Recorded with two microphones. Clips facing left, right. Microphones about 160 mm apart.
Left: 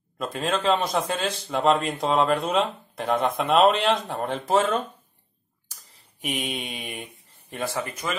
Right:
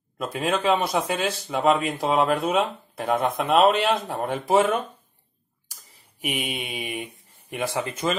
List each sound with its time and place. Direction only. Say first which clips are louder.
0.2 s speech: right 1 dB; 10° right (ahead or behind)
6.2 s speech: even; 10° right (ahead or behind)
7.5 s speech: right 2 dB; 20° right (ahead or behind)